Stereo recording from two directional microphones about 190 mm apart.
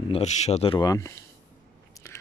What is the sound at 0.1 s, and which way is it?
Speech, 35° left (ahead or behind).